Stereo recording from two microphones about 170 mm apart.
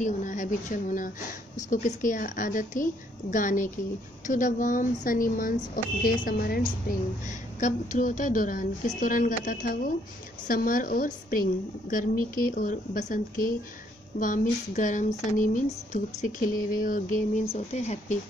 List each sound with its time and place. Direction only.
0.0 s speech: 50° left (ahead or behind); by 6.6 s 65° left (ahead or behind)
7.6 s a woman's voice: 50° left (ahead or behind)
17.5 s speech: 40° left (ahead or behind)